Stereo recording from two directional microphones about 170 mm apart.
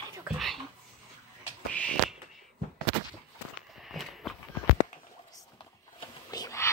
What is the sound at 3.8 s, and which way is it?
Walk, centre (ahead or behind).